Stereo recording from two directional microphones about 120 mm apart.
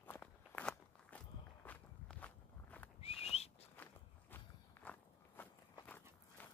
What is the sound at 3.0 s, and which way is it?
Whistling, 55° left (ahead or behind).